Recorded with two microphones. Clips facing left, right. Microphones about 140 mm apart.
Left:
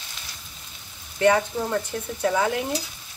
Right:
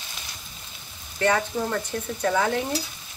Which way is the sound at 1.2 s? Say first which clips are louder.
Left 3 dB; 15° left (ahead or behind).